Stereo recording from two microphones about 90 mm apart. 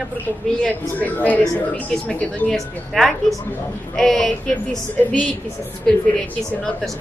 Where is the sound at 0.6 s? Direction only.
15° left (ahead or behind).